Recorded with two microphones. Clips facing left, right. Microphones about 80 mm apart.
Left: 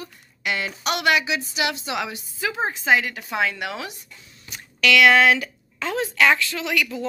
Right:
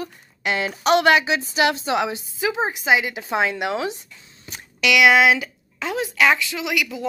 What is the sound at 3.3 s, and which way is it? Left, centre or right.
Speech, right.